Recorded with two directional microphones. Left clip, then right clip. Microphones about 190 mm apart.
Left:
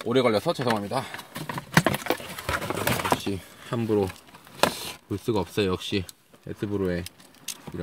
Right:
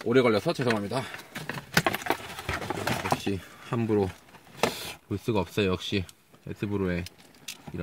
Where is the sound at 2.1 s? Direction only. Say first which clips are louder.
Left 2 dB; 45° left (ahead or behind).